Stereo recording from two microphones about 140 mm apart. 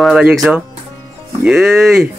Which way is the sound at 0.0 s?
5° right (ahead or behind).